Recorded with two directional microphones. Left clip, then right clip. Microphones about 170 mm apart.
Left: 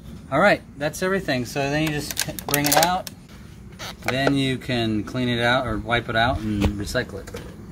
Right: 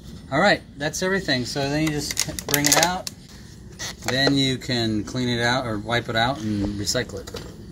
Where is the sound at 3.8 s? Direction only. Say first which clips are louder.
Right 1 dB; 10° left (ahead or behind); by 7.1 s 10° right (ahead or behind).